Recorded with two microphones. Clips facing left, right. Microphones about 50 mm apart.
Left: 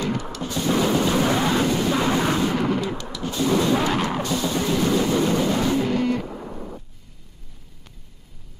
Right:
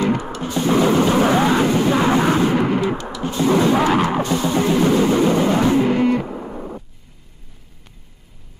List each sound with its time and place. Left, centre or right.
0.0 s music: right